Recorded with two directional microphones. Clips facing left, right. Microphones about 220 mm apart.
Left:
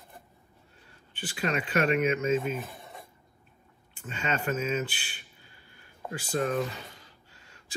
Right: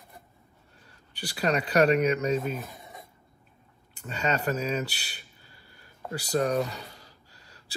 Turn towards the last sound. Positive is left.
turn(degrees=-35)  # may be behind; listen again after turning